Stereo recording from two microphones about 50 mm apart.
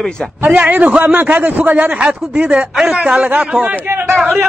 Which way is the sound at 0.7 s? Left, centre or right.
Right.